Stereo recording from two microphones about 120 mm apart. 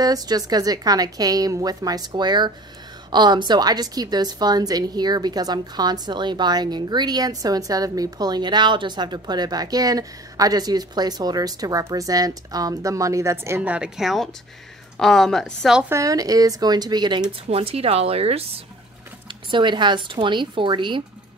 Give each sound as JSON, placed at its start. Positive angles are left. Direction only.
{"t": 0.0, "sound": "a woman's voice", "side_deg": -30}
{"t": 13.6, "sound": "a woman's voice", "side_deg": -10}
{"t": 15.9, "sound": "a woman's voice", "side_deg": -30}
{"t": 17.5, "sound": "speech", "side_deg": -55}
{"t": 19.2, "sound": "a woman's voice", "side_deg": -40}